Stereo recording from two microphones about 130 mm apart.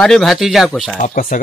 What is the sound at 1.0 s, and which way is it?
Speech, 75° left (ahead or behind).